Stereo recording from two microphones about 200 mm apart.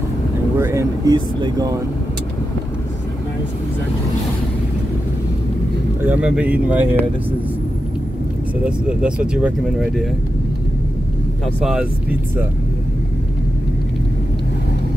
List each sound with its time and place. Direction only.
0.6 s speech: 15° right (ahead or behind)
6.0 s speech: 5° right (ahead or behind)
8.6 s speech: 5° right (ahead or behind)
11.6 s speech: 5° right (ahead or behind)